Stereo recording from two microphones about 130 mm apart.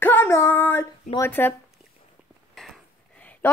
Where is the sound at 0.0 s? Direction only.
15° left (ahead or behind).